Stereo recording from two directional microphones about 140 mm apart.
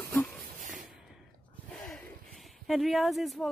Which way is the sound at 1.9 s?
Centre (ahead or behind).